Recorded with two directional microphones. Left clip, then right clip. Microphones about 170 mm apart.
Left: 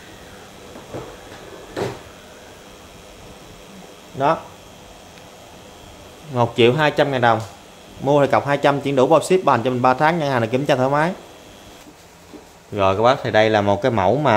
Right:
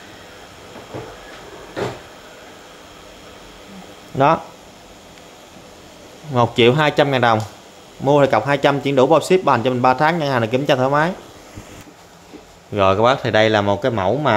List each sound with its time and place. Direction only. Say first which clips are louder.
6.3 s speech: right 2 dB; 20° right (ahead or behind)
8.0 s speech: right 2 dB; 10° right (ahead or behind)
12.7 s speech: right 1 dB; 20° right (ahead or behind); by 13.7 s 5° right (ahead or behind)
13.7 s speech: left 1 dB; 10° left (ahead or behind)